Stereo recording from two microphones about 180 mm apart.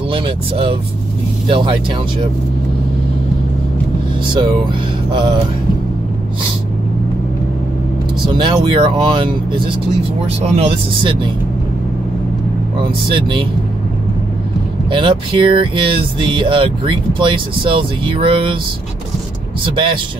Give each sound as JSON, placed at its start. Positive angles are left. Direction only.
{"t": 0.1, "sound": "speech", "side_deg": -30}
{"t": 8.4, "sound": "speech", "side_deg": -25}
{"t": 10.4, "sound": "speech", "side_deg": -35}
{"t": 12.8, "sound": "speech", "side_deg": -30}
{"t": 14.9, "sound": "speech", "side_deg": -30}
{"t": 19.7, "sound": "speech", "side_deg": -25}